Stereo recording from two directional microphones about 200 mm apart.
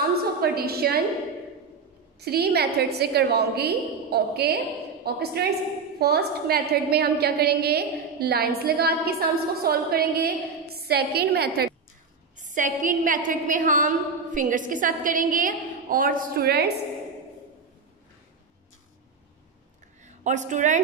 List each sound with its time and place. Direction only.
0.4 s a woman's voice: 50° right (ahead or behind)
2.1 s a woman's voice: 55° right (ahead or behind)
12.4 s a woman's voice: 40° right (ahead or behind)
20.1 s a woman's voice: 35° right (ahead or behind)